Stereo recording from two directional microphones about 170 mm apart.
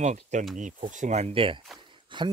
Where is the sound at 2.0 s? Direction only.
30° right (ahead or behind).